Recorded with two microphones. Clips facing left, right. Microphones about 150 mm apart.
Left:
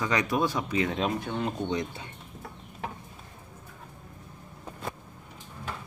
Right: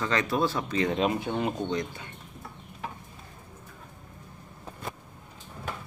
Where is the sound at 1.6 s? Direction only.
25° left (ahead or behind).